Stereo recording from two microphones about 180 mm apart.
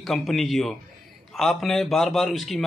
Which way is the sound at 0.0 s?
Centre (ahead or behind).